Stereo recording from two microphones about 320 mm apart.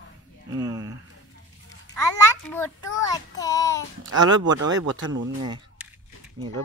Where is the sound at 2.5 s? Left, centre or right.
Centre.